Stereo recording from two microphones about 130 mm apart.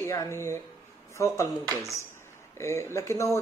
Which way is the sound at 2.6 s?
20° left (ahead or behind).